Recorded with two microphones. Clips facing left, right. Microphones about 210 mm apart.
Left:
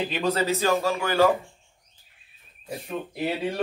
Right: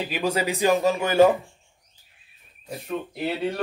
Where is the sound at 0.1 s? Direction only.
15° right (ahead or behind).